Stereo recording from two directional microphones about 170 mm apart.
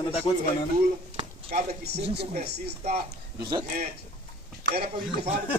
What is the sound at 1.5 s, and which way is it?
Speech, 75° right (ahead or behind).